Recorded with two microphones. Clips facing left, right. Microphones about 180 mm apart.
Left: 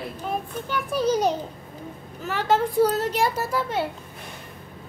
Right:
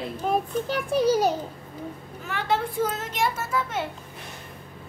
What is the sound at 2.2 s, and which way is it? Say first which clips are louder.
Speech: left 4 dB; 40° left (ahead or behind).